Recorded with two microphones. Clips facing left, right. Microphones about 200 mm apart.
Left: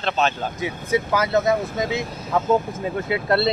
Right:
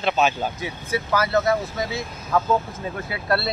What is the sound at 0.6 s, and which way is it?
Speech, 20° left (ahead or behind).